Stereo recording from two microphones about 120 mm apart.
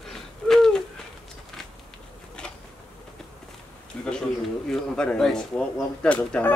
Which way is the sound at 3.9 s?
10° left (ahead or behind).